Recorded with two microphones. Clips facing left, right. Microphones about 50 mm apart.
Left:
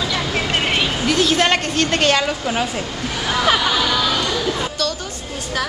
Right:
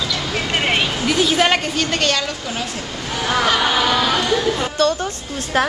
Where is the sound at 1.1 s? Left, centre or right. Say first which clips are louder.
Even; centre.